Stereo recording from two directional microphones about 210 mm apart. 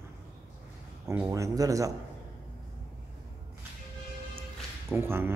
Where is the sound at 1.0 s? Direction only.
15° right (ahead or behind).